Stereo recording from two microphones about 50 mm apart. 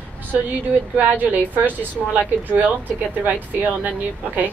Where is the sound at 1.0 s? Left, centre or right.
Right.